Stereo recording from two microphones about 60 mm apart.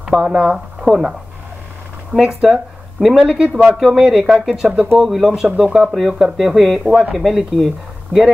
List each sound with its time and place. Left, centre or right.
0.2 s speech: centre
2.1 s speech: centre
4.2 s speech: centre
6.8 s speech: centre
7.2 s speech: centre